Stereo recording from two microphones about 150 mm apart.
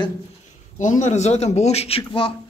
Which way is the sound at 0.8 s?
55° left (ahead or behind).